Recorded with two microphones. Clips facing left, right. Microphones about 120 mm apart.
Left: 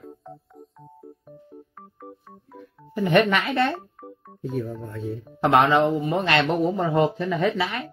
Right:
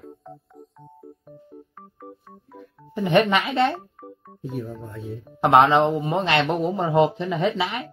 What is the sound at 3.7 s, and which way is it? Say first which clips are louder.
Music: even; centre (ahead or behind).